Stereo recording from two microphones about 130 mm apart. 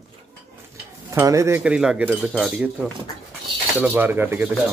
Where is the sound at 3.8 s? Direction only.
15° right (ahead or behind).